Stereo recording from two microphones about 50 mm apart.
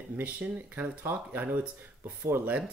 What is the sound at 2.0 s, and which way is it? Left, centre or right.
Speech, right.